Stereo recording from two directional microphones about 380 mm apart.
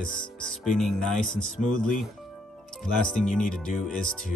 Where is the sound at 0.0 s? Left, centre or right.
Centre.